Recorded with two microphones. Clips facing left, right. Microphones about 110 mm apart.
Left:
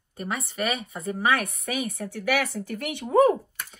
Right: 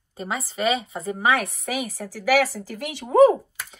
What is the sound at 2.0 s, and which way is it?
Speech, 65° left (ahead or behind).